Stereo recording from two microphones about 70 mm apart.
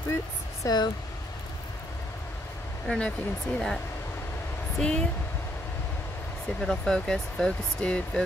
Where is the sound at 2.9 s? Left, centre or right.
Left.